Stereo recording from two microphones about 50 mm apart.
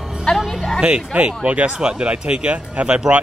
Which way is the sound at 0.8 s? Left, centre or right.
Right.